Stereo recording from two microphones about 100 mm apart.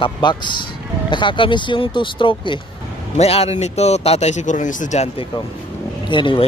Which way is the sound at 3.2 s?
90° left.